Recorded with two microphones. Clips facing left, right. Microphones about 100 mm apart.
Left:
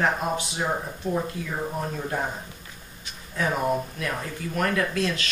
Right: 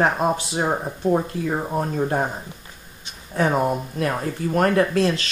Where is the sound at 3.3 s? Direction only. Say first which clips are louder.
Right 4 dB; 35° right (ahead or behind).